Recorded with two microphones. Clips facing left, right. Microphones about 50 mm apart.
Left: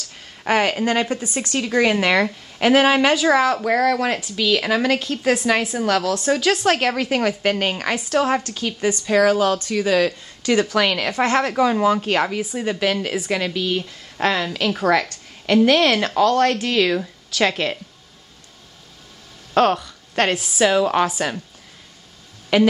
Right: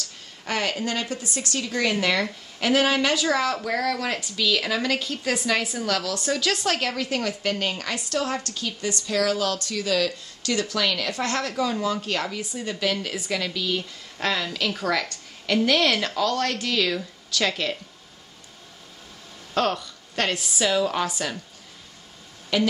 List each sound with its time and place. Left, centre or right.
0.5 s a woman's voice: left; by 6.8 s centre
6.8 s a woman's voice: left
7.9 s speech: left
11.1 s a woman's voice: left
19.5 s speech: left
22.5 s a woman's voice: left